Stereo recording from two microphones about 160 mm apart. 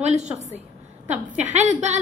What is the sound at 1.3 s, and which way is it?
Speech, 45° right (ahead or behind).